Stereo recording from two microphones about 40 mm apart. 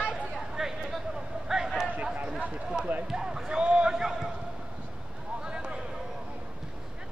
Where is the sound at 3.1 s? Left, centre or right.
Centre.